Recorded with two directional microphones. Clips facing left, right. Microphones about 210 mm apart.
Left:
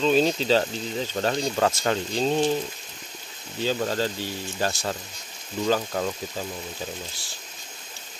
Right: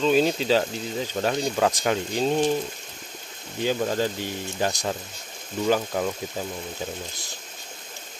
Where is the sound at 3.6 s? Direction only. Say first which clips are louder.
Right 1 dB; 15° right (ahead or behind).